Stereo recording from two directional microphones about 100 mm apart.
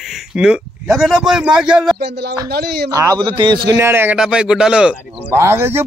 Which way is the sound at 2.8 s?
35° right (ahead or behind).